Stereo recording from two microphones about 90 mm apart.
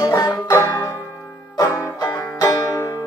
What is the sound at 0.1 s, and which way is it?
Banjo, 40° left (ahead or behind).